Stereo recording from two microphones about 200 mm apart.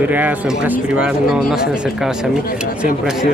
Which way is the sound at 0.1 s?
10° right (ahead or behind).